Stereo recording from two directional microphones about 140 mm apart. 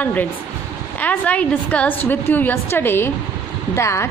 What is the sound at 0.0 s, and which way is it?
A woman's voice, 10° left (ahead or behind).